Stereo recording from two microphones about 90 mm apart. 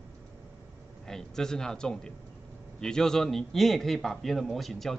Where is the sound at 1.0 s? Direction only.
5° left (ahead or behind).